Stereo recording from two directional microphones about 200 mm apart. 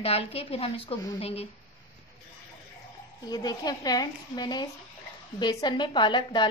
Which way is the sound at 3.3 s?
20° left (ahead or behind).